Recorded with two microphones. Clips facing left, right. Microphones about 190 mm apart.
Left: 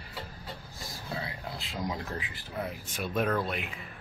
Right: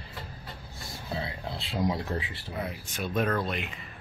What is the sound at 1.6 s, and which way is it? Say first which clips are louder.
Speech: right 7 dB; 30° right (ahead or behind).